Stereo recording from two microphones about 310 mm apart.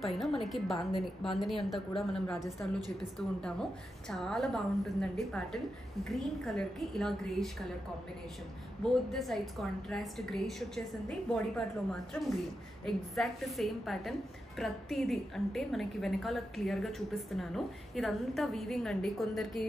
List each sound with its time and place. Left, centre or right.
0.0 s a woman's voice: centre
8.8 s a woman's voice: centre